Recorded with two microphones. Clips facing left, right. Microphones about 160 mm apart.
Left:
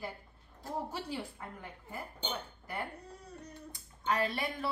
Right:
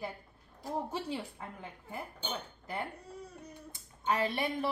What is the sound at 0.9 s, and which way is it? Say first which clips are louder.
A woman's voice: right 2 dB; 20° right (ahead or behind).